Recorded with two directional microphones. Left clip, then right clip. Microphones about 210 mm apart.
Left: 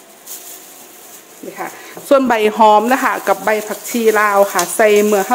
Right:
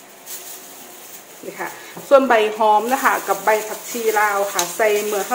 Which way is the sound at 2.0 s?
50° left (ahead or behind).